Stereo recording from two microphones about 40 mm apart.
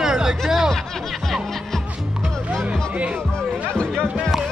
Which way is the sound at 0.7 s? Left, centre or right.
Centre.